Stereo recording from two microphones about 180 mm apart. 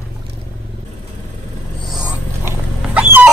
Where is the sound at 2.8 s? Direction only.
10° right (ahead or behind).